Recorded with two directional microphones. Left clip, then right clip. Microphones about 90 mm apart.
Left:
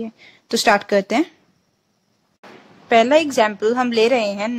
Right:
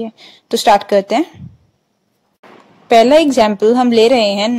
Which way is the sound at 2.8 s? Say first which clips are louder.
Right 6 dB; 40° right (ahead or behind).